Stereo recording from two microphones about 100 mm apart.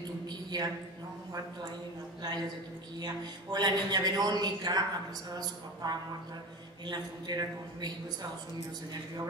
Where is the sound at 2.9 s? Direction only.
40° right (ahead or behind).